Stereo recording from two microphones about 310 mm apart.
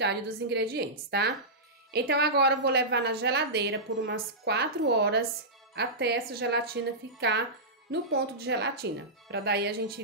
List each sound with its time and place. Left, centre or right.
0.0 s a woman's voice: right